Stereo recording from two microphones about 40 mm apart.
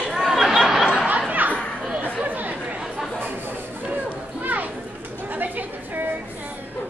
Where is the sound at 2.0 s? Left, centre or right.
Right.